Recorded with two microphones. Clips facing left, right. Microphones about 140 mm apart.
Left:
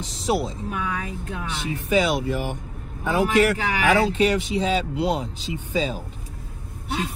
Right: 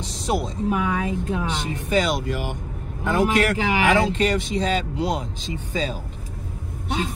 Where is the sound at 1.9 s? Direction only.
10° left (ahead or behind).